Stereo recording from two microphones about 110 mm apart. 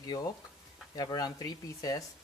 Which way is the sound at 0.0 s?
35° left (ahead or behind).